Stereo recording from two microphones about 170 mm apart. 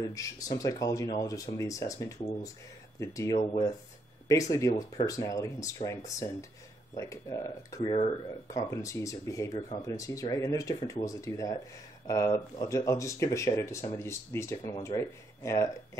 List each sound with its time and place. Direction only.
0.0 s speech: 20° left (ahead or behind)